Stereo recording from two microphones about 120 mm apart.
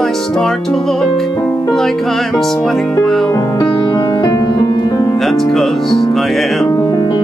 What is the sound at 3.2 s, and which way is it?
Music, 35° left (ahead or behind).